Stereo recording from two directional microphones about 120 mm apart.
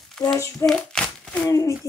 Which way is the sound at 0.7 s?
5° left (ahead or behind).